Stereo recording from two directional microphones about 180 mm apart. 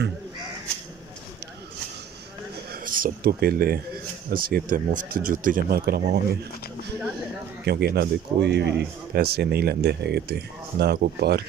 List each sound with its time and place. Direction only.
2.7 s speech: 50° right (ahead or behind)
7.6 s speech: 60° right (ahead or behind)